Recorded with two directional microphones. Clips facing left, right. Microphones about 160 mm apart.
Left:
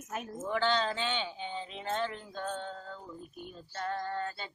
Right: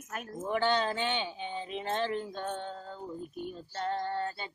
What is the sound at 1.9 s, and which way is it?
Speech, 30° right (ahead or behind).